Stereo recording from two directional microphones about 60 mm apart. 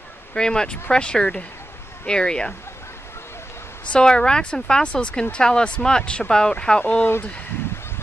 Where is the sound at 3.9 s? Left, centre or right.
Centre.